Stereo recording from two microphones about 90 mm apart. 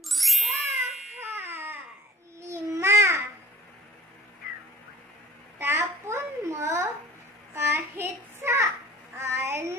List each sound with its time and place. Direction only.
0.1 s ding: centre (ahead or behind)
1.2 s baby cry: 25° right (ahead or behind)
2.4 s babbling: 30° right (ahead or behind)
5.6 s a sound: 25° right (ahead or behind)
7.5 s child singing: 30° right (ahead or behind)
9.2 s a sound: 30° right (ahead or behind)